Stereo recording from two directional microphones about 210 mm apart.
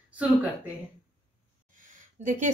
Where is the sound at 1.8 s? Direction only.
40° right (ahead or behind).